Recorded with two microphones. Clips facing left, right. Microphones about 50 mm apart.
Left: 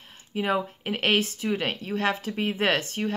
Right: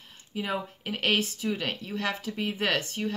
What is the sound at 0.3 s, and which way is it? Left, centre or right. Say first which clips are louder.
A woman's voice: left 6 dB; left.